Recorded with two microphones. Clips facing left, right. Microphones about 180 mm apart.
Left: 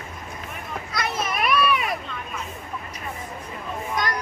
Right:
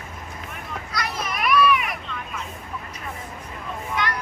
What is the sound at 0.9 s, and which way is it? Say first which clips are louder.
Children playing: left 2 dB; 25° left (ahead or behind).